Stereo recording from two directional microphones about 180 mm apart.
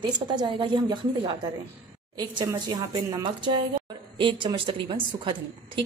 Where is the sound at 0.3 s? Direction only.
25° right (ahead or behind).